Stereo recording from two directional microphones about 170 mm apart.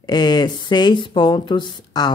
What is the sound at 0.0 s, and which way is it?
Speech, 25° left (ahead or behind).